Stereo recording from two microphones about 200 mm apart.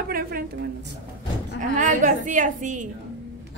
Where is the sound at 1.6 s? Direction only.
40° right (ahead or behind).